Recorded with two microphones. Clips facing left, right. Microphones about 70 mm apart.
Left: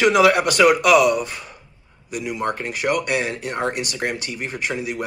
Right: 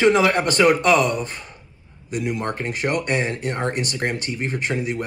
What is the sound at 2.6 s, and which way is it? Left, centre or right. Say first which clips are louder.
Speech: left 1 dB; right.